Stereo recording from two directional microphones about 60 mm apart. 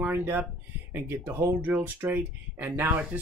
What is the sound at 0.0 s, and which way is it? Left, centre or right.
Speech, right.